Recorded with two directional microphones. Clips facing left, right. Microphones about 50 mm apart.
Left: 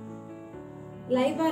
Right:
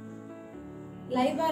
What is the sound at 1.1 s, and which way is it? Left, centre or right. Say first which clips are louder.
Speech: left 2 dB; centre.